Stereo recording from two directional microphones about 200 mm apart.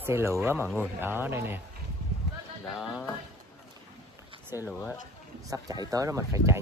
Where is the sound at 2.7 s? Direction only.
Centre (ahead or behind).